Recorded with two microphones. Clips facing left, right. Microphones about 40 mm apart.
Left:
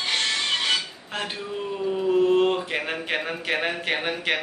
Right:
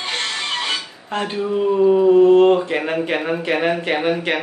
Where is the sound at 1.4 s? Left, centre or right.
Right.